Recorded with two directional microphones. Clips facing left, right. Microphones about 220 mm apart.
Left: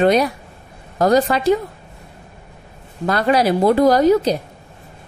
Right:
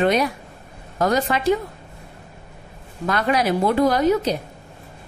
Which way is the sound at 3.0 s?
35° left (ahead or behind).